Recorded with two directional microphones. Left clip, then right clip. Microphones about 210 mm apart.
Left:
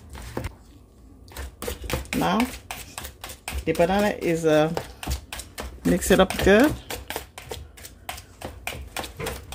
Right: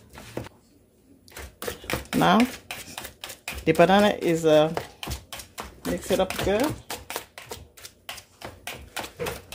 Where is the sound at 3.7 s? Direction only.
20° right (ahead or behind); by 4.8 s centre (ahead or behind).